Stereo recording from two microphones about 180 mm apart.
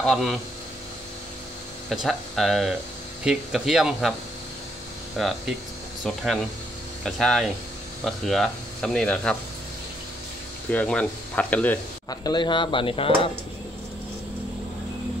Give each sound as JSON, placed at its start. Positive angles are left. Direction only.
{"t": 0.0, "sound": "speech", "side_deg": 0}
{"t": 1.9, "sound": "speech", "side_deg": 0}
{"t": 5.2, "sound": "speech", "side_deg": 0}
{"t": 10.7, "sound": "speech", "side_deg": 5}
{"t": 12.1, "sound": "speech", "side_deg": 20}